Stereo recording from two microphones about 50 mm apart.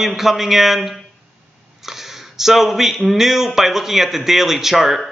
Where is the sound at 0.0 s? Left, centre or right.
Centre.